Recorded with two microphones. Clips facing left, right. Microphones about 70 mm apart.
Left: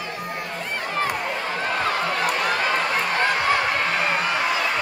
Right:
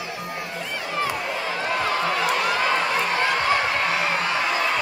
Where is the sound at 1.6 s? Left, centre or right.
Left.